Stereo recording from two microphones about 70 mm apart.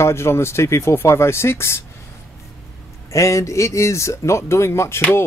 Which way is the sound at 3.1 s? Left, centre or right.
Left.